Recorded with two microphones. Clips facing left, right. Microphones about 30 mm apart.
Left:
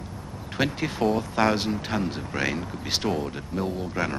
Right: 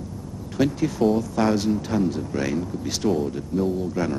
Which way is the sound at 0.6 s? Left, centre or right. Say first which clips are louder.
Right 4 dB; left.